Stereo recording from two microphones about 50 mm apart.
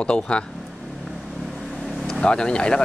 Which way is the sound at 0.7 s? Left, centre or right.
Centre.